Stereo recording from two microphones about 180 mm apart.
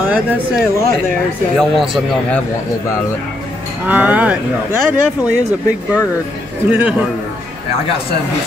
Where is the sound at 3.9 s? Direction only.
10° right (ahead or behind).